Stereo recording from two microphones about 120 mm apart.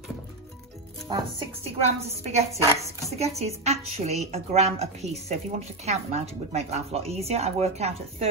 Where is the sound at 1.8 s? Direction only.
60° right (ahead or behind).